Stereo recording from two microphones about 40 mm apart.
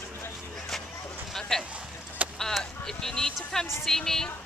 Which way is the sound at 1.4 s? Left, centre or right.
Centre.